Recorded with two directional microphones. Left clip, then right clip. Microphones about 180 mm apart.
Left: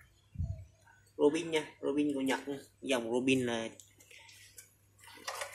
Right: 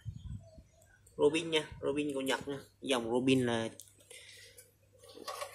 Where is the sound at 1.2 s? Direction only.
5° left (ahead or behind); by 3.8 s 10° right (ahead or behind).